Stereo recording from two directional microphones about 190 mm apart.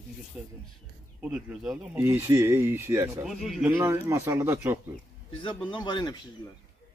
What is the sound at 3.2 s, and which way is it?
Speech, centre (ahead or behind).